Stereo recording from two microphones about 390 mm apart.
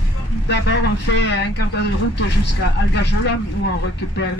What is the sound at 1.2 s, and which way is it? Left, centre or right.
Speech, left.